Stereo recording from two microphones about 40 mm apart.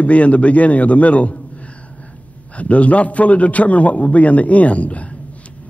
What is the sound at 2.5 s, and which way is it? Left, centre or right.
Speech, left.